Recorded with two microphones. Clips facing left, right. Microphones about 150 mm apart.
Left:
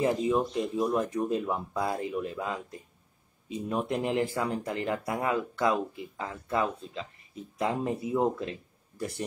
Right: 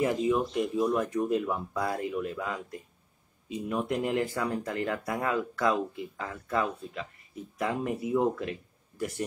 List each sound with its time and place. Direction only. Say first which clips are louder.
0.3 s speech: even; 25° left (ahead or behind)